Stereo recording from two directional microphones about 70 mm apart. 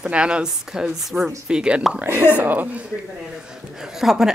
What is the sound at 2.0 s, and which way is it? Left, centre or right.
Speech, right.